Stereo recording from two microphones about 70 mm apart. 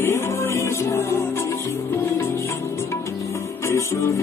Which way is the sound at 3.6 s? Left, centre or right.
Left.